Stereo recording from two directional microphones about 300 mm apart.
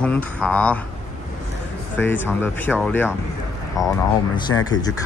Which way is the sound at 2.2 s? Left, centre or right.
Centre.